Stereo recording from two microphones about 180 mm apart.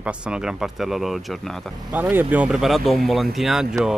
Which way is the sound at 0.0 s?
5° right (ahead or behind).